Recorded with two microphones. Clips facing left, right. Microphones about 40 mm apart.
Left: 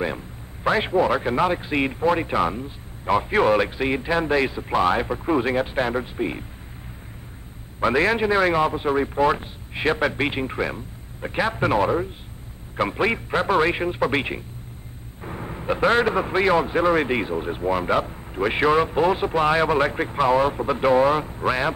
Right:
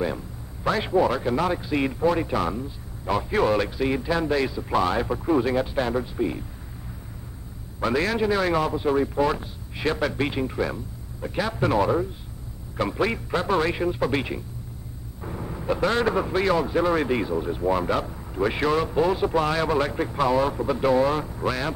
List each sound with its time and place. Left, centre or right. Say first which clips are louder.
0.7 s speech: left 2 dB; left
7.8 s speech: left 3 dB; left
17.6 s speech: left 2 dB; left